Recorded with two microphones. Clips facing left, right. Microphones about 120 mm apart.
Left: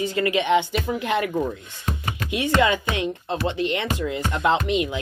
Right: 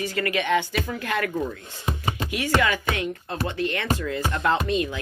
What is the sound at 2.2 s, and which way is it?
Speech, 20° left (ahead or behind).